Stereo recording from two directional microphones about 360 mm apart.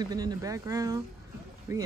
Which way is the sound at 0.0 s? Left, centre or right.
Centre.